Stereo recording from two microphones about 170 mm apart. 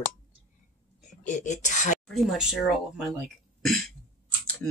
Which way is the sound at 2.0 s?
Centre (ahead or behind).